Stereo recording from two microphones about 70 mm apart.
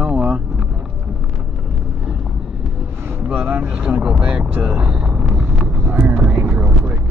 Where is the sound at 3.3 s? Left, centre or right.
Right.